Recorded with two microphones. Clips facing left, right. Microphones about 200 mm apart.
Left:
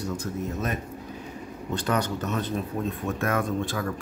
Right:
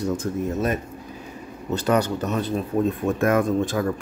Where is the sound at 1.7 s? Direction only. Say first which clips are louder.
Right 6 dB; 10° right (ahead or behind).